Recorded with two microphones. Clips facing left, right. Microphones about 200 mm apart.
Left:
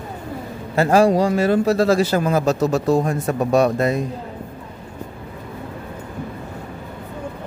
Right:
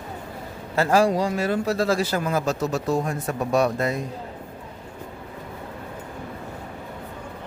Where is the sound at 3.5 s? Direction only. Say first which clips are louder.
Left 4 dB; 25° left (ahead or behind).